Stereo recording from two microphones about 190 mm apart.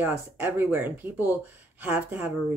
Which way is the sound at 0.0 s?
10° right (ahead or behind).